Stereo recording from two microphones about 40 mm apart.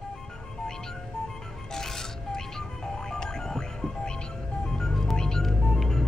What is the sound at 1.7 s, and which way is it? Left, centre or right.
Music, centre.